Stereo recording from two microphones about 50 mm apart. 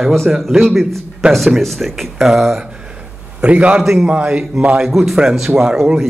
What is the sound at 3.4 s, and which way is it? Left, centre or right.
Speech, right.